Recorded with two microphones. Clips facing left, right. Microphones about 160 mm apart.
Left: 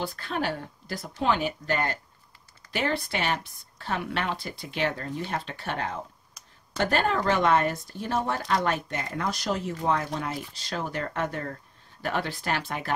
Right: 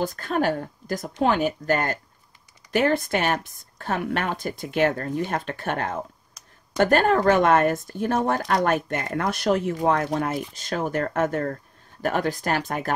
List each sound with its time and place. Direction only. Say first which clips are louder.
0.0 s speech: right 6 dB; 45° right (ahead or behind)